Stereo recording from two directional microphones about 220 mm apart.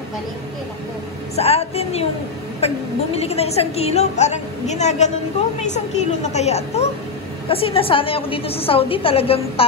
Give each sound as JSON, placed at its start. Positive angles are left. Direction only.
{"t": 1.3, "sound": "a woman's voice", "side_deg": 30}
{"t": 6.2, "sound": "a woman's voice", "side_deg": 30}